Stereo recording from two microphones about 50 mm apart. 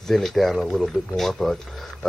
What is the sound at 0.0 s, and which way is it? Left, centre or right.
Speech, centre.